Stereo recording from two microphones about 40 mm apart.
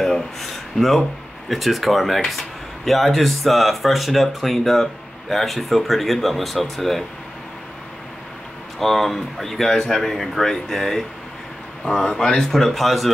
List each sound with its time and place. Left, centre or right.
0.0 s a sound: centre
1.5 s speech: centre
8.7 s speech: centre
12.4 s speech: centre